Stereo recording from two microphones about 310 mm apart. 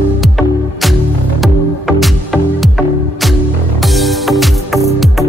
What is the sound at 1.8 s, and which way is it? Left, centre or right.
Music, centre.